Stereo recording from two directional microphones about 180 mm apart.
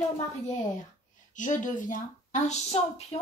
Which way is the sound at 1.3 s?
45° left (ahead or behind).